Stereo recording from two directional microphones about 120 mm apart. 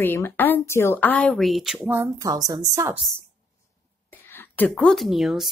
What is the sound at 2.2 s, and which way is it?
Speech, 30° right (ahead or behind).